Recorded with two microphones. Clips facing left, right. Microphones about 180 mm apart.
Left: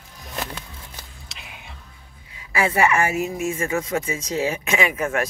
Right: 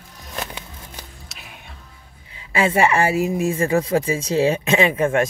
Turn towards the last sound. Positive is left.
turn(degrees=-30)  # may be behind; listen again after turning